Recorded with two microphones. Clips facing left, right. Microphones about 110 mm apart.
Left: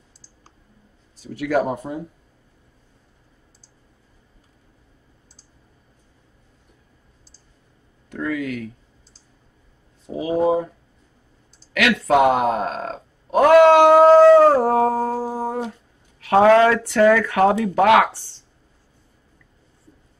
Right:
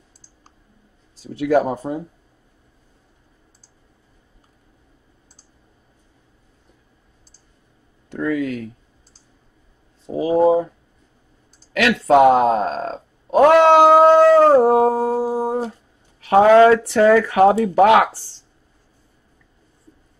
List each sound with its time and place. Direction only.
1.1 s speech: 30° right (ahead or behind)
8.1 s a sound: 30° right (ahead or behind)
10.0 s speech: 30° right (ahead or behind)
11.7 s speech: 35° right (ahead or behind)
14.5 s a sound: 20° right (ahead or behind)
16.2 s speech: 20° right (ahead or behind)